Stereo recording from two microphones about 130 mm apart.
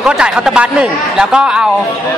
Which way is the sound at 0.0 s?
5° right (ahead or behind).